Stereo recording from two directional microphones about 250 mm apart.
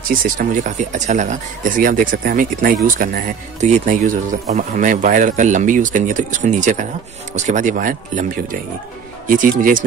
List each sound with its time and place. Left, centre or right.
0.1 s speech: right